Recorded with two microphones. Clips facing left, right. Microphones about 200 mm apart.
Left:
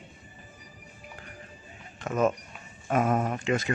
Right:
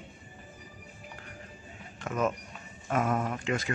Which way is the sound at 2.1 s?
35° left (ahead or behind).